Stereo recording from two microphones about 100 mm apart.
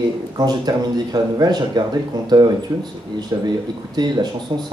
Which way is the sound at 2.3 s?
40° right (ahead or behind).